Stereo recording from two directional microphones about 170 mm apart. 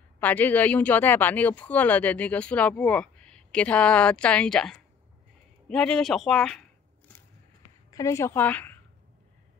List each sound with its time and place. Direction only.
0.2 s speech: 10° left (ahead or behind)
7.9 s speech: 20° left (ahead or behind)